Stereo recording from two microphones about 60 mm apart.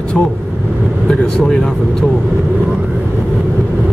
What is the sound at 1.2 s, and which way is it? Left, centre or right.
Speech, centre.